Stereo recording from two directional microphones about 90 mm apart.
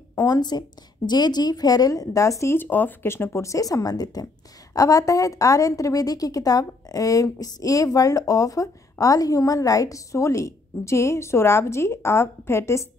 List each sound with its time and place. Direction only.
0.1 s a woman's voice: 45° left (ahead or behind)
2.5 s a woman's voice: 20° left (ahead or behind)